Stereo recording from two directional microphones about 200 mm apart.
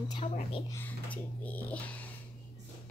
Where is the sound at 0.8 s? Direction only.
10° left (ahead or behind).